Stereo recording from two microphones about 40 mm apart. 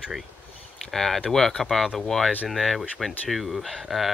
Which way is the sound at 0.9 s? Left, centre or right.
Centre.